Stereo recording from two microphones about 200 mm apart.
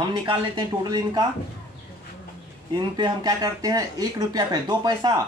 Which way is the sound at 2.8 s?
20° right (ahead or behind).